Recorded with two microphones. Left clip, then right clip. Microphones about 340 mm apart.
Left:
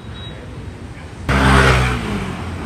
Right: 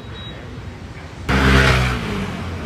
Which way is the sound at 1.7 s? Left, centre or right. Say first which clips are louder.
Left 2 dB; centre.